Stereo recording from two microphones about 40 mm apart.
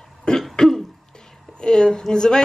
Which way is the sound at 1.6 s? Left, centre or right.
Centre.